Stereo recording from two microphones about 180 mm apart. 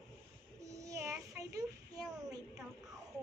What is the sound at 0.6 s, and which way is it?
Child singing, 15° right (ahead or behind).